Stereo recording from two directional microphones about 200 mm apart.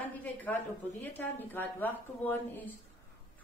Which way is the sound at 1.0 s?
10° left (ahead or behind).